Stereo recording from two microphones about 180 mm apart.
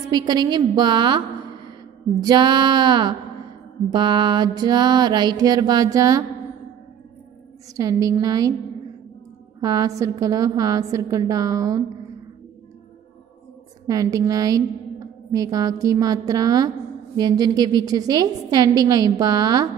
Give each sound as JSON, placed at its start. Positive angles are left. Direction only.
{"t": 0.1, "sound": "a woman's voice", "side_deg": -25}
{"t": 7.7, "sound": "a woman's voice", "side_deg": -20}
{"t": 9.6, "sound": "a woman's voice", "side_deg": -20}
{"t": 13.8, "sound": "a woman's voice", "side_deg": -20}